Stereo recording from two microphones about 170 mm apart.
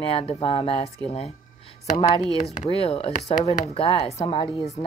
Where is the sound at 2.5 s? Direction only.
40° left (ahead or behind).